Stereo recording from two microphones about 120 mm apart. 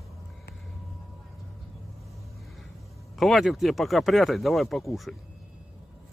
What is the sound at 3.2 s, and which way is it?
Speech, centre (ahead or behind).